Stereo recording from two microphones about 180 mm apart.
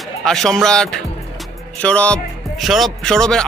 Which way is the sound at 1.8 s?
5° left (ahead or behind).